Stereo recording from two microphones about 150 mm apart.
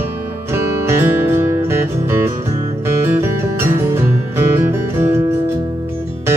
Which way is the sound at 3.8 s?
15° right (ahead or behind).